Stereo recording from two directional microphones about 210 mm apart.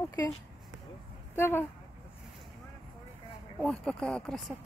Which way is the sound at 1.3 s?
10° left (ahead or behind).